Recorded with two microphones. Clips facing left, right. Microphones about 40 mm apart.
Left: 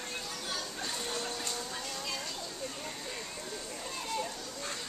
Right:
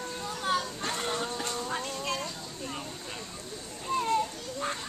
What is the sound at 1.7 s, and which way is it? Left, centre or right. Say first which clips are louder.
Music: right 6 dB; right.